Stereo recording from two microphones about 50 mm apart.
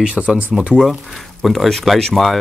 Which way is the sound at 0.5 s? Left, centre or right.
Centre.